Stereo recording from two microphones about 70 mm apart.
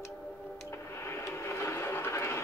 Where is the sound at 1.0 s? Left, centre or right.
Left.